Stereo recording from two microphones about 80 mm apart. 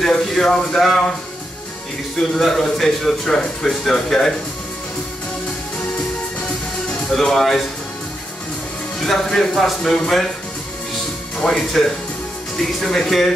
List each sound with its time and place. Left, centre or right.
0.0 s speech: centre
2.1 s speech: centre
7.2 s speech: centre
9.0 s speech: centre
11.3 s speech: centre